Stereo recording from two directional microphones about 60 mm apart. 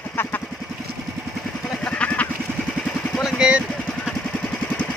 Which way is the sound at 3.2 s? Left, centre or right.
Centre.